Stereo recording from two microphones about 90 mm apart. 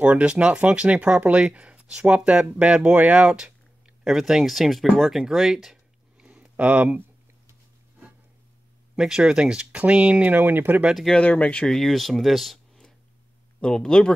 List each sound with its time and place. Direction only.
0.0 s speech: 15° right (ahead or behind)
6.2 s a sound: 15° right (ahead or behind)
8.9 s speech: 5° right (ahead or behind)
10.9 s speech: centre (ahead or behind)
11.1 s speech: 15° left (ahead or behind)